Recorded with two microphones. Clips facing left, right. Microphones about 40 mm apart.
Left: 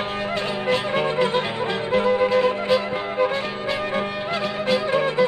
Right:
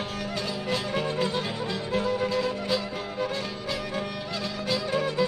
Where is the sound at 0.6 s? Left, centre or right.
Left.